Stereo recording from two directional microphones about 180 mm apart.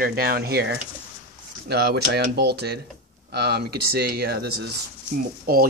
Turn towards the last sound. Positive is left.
turn(degrees=-55)  # may be behind; listen again after turning